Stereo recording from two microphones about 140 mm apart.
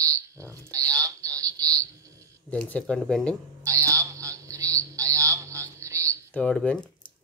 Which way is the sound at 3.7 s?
20° right (ahead or behind).